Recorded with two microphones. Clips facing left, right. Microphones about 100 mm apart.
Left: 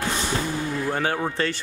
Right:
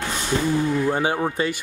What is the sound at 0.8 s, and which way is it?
Speech, 15° right (ahead or behind).